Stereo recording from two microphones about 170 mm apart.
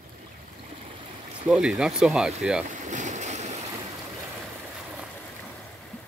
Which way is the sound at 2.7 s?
45° right (ahead or behind).